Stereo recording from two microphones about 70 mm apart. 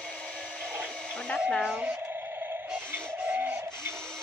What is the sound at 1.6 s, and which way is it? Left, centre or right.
Speech, centre.